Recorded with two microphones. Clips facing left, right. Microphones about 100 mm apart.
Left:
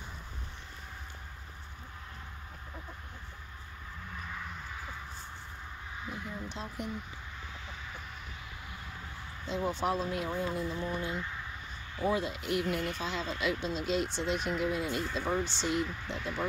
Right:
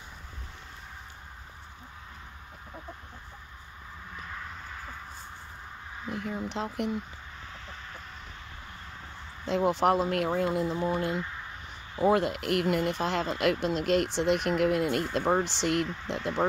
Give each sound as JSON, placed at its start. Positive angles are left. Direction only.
{"t": 6.1, "sound": "speech", "side_deg": -70}
{"t": 9.5, "sound": "speech", "side_deg": -85}
{"t": 12.1, "sound": "speech", "side_deg": -65}